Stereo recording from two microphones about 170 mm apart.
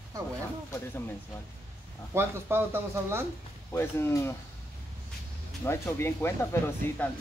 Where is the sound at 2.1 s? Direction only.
15° right (ahead or behind).